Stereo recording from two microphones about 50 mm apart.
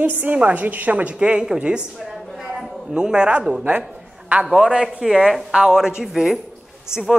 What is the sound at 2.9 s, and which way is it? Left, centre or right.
Speech, centre.